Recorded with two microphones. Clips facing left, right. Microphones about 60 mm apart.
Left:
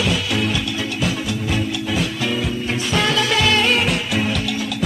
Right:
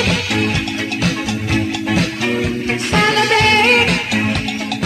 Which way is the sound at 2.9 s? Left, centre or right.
Right.